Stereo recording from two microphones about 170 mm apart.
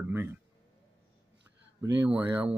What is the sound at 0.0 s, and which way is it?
Speech, 15° right (ahead or behind).